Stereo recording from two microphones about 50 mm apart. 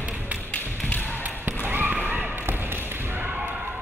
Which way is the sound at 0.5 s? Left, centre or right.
Left.